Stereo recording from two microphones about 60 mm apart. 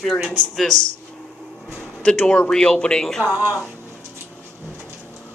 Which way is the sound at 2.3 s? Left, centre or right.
Centre.